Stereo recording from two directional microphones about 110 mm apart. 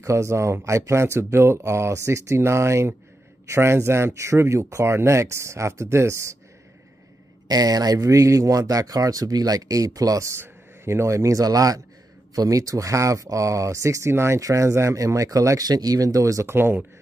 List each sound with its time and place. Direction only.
0.0 s speech: 25° right (ahead or behind)
7.4 s speech: 35° right (ahead or behind); by 16.8 s 20° right (ahead or behind)